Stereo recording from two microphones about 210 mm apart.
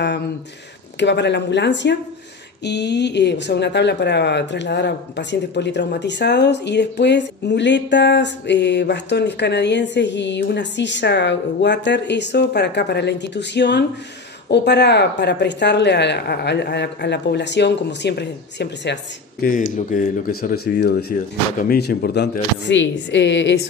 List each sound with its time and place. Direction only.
0.9 s speech: 55° left (ahead or behind)
19.4 s speech: 40° left (ahead or behind); by 23.6 s 55° left (ahead or behind)